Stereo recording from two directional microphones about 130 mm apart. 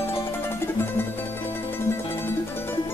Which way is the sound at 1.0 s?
15° left (ahead or behind).